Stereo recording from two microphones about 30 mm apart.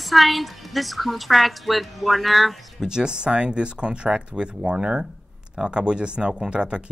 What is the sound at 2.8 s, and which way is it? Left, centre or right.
Speech, right.